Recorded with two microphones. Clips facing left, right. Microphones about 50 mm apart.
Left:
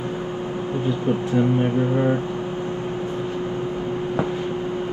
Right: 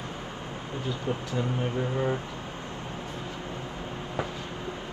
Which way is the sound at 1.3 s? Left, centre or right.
Left.